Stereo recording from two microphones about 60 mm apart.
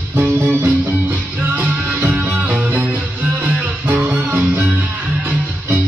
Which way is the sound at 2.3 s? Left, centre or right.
Right.